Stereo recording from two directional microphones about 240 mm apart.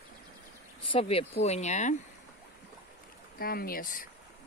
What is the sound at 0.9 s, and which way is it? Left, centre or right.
Speech, left.